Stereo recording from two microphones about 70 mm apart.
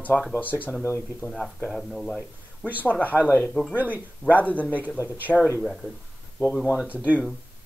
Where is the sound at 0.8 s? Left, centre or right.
Left.